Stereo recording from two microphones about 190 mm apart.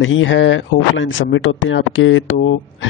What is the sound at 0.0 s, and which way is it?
Speech, 90° left.